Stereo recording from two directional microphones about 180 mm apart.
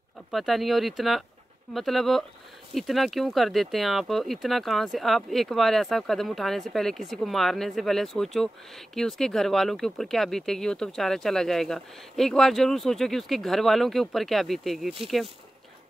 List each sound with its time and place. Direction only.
0.3 s speech: centre (ahead or behind)